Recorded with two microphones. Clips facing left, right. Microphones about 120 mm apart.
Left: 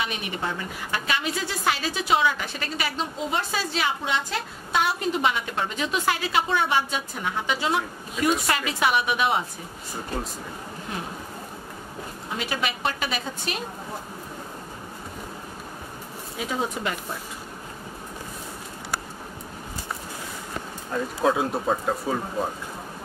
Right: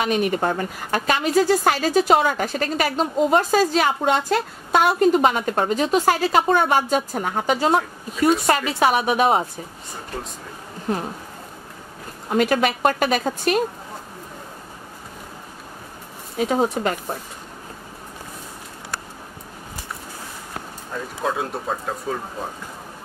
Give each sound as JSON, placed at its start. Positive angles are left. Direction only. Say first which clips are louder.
{"t": 0.0, "sound": "a woman's voice", "louder": "right 9 dB", "side_deg": -45}
{"t": 12.3, "sound": "a woman's voice", "louder": "right 10 dB", "side_deg": -50}
{"t": 16.3, "sound": "speech", "louder": "right 8 dB", "side_deg": -45}
{"t": 21.2, "sound": "speech", "louder": "left 2 dB", "side_deg": 0}